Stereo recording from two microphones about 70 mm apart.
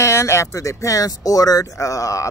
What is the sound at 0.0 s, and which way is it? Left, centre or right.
A man's voice, left.